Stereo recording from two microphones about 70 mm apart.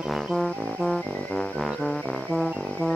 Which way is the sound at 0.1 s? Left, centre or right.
Centre.